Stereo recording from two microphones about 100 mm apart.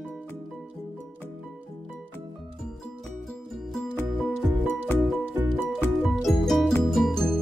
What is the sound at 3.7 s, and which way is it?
Music, centre (ahead or behind).